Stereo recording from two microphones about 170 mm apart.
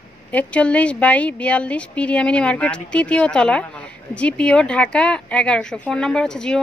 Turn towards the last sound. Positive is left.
turn(degrees=5)  # may be behind; listen again after turning